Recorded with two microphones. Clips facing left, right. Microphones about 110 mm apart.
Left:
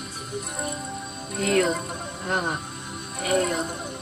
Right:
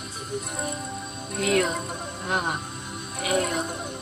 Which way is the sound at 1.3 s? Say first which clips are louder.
Left 1 dB; centre (ahead or behind).